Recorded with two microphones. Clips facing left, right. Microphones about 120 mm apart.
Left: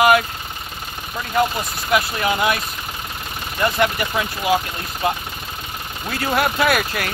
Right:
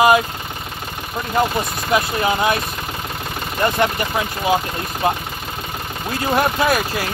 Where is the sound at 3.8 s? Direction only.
25° right (ahead or behind).